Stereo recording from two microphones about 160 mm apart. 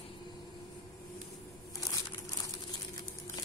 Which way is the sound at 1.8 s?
20° left (ahead or behind).